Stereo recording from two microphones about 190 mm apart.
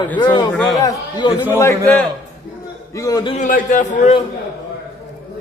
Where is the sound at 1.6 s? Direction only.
10° left (ahead or behind).